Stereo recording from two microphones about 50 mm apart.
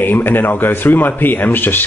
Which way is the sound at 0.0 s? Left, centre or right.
Left.